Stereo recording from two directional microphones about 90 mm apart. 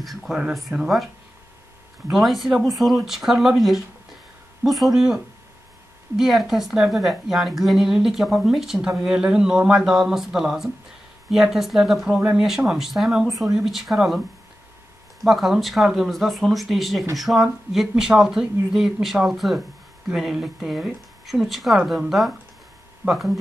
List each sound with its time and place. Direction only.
0.0 s speech: centre (ahead or behind)
2.0 s a woman's voice: centre (ahead or behind)
12.1 s speech: 15° right (ahead or behind)
12.4 s a woman's voice: 5° right (ahead or behind)
15.2 s a woman's voice: centre (ahead or behind)